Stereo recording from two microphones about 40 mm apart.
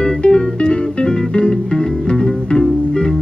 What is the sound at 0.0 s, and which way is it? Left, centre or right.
Music, left.